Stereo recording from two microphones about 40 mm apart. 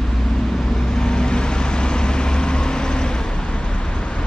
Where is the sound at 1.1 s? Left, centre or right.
Left.